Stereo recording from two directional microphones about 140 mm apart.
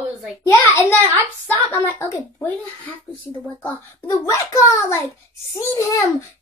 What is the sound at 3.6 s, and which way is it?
Child singing, 20° left (ahead or behind).